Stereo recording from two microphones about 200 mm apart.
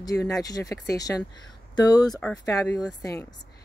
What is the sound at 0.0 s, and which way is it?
Speech, 15° left (ahead or behind).